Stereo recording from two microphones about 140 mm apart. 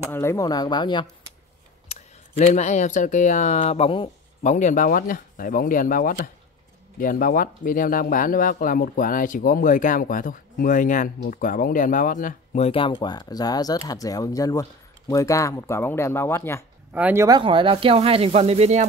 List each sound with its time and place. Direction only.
0.1 s speech: 20° left (ahead or behind)
1.9 s speech: 55° left (ahead or behind)
4.4 s speech: 60° left (ahead or behind); by 16.6 s 20° left (ahead or behind)
16.9 s speech: 15° right (ahead or behind)
17.3 s speech: 35° right (ahead or behind)